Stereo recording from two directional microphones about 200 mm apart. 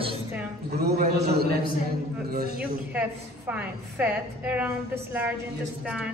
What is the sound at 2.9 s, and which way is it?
A woman's voice, 5° right (ahead or behind).